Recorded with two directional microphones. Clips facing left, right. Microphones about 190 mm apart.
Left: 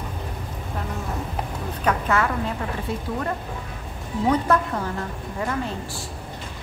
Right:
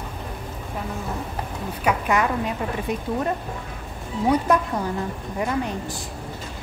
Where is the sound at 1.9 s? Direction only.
15° right (ahead or behind).